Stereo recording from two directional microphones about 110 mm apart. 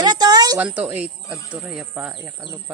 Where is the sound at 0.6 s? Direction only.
15° right (ahead or behind).